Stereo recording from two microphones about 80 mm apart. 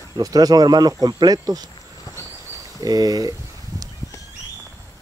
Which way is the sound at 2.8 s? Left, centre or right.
Right.